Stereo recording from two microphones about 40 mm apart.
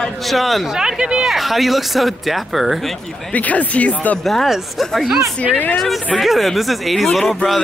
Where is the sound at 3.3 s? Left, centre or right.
Left.